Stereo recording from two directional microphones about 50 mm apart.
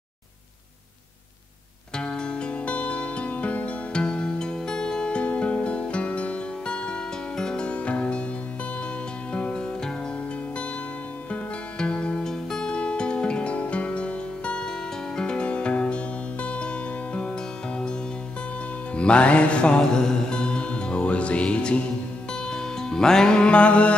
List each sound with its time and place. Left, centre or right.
2.0 s music: centre
9.3 s music: left
11.8 s music: left
18.9 s music: left